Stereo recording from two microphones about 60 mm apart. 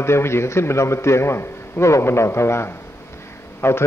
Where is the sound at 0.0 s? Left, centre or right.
Left.